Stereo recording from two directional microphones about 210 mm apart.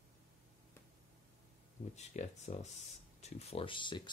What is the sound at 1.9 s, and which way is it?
Speech, 30° left (ahead or behind).